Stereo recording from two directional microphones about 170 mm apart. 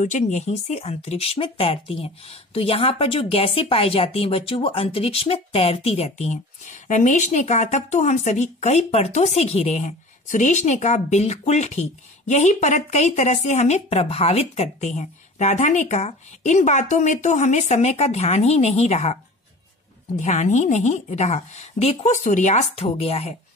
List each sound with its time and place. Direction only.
0.0 s speech: 45° left (ahead or behind)
20.2 s a woman's voice: 45° left (ahead or behind)